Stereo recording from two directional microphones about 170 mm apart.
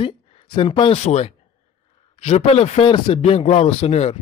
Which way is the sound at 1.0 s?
40° left (ahead or behind).